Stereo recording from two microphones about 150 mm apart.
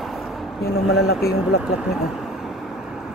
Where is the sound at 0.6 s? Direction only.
90° left.